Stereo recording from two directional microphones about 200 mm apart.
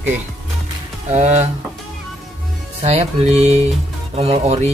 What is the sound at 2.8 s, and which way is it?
Speech, 30° right (ahead or behind).